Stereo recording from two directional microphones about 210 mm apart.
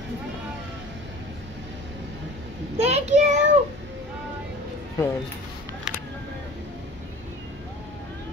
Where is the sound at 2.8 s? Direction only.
30° right (ahead or behind).